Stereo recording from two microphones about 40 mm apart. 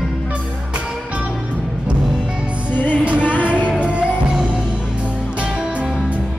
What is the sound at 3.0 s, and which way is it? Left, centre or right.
Music, right.